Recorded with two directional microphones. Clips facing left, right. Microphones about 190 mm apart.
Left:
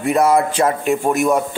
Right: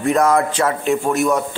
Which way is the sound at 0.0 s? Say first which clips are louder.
Left 1 dB; 10° left (ahead or behind).